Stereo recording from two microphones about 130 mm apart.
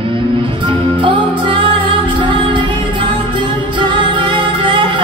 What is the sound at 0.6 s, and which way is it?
Music, 40° right (ahead or behind).